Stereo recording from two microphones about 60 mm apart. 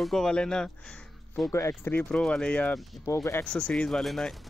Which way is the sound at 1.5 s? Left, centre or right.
Left.